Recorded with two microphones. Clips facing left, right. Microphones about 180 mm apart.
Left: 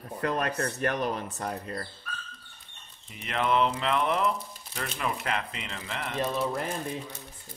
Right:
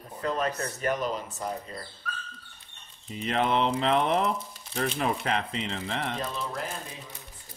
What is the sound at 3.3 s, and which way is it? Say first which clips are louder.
Speech: right 1 dB; 30° right (ahead or behind).